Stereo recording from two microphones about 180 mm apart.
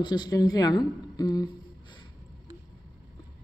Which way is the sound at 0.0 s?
25° left (ahead or behind).